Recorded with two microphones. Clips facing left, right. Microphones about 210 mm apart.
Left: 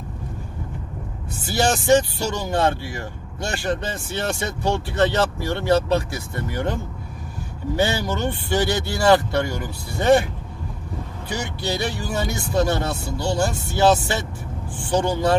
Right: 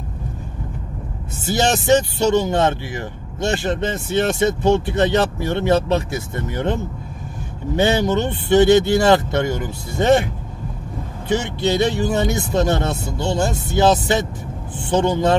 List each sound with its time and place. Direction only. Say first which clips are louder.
1.4 s speech: right 2 dB; 20° right (ahead or behind)
11.2 s speech: right 8 dB; 25° right (ahead or behind)